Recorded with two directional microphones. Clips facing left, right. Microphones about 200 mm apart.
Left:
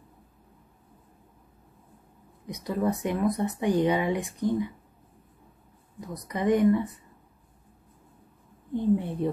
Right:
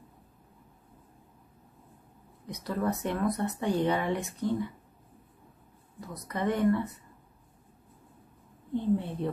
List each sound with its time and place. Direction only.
2.4 s speech: 15° left (ahead or behind)
5.9 s speech: 15° left (ahead or behind)
8.7 s speech: 15° left (ahead or behind)